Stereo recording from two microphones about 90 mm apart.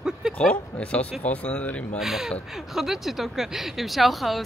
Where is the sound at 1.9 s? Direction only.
5° right (ahead or behind).